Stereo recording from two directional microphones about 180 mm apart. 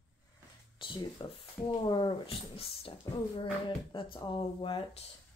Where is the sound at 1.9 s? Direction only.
25° left (ahead or behind).